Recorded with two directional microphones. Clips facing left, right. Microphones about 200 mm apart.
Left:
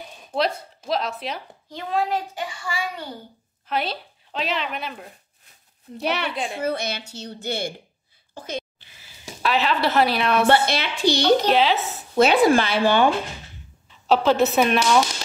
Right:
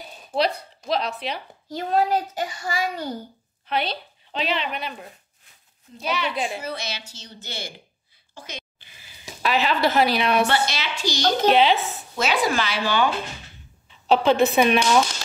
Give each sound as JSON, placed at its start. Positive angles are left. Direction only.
{"t": 0.3, "sound": "speech", "side_deg": 0}
{"t": 1.7, "sound": "a child's voice", "side_deg": -40}
{"t": 3.6, "sound": "a woman's voice", "side_deg": 0}
{"t": 5.9, "sound": "a woman's voice", "side_deg": 65}
{"t": 6.3, "sound": "speech", "side_deg": -5}
{"t": 6.6, "sound": "a woman's voice", "side_deg": 55}
{"t": 8.7, "sound": "a sound", "side_deg": 0}
{"t": 10.4, "sound": "a woman's voice", "side_deg": 55}
{"t": 11.5, "sound": "speech", "side_deg": 0}
{"t": 12.2, "sound": "a woman's voice", "side_deg": 55}
{"t": 14.0, "sound": "speech", "side_deg": 0}